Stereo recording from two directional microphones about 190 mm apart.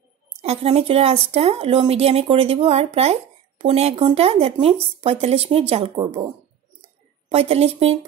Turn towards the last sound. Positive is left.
turn(degrees=-30)  # may be behind; listen again after turning